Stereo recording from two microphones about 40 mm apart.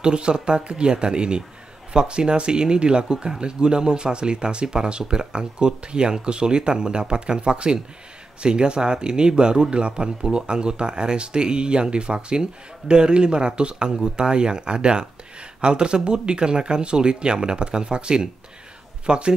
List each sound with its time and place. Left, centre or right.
0.0 s speech: right